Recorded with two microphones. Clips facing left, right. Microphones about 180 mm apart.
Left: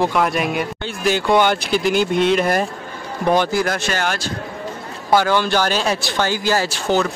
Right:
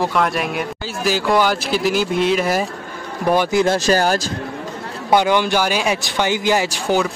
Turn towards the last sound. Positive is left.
turn(degrees=-15)  # may be behind; listen again after turning